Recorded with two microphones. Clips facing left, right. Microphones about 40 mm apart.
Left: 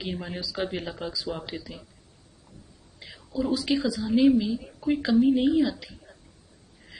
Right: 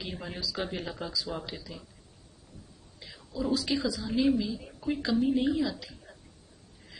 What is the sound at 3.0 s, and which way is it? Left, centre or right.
Whispering, centre.